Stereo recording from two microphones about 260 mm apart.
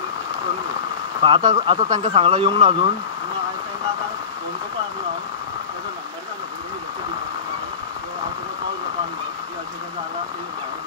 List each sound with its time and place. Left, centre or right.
1.2 s speech: centre